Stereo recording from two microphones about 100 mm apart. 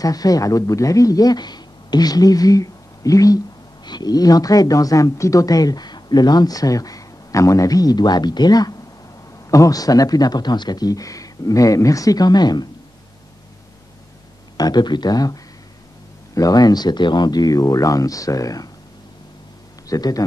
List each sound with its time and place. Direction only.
0.0 s speech: 35° left (ahead or behind)
14.6 s speech: 45° left (ahead or behind)
19.9 s speech: 35° left (ahead or behind)